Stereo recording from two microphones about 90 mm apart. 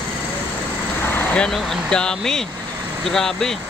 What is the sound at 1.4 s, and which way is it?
Speech, 5° left (ahead or behind).